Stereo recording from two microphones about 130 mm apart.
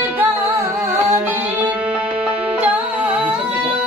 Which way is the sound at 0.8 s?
15° right (ahead or behind).